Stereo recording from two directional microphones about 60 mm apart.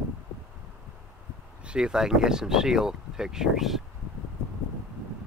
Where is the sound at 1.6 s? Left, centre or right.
Centre.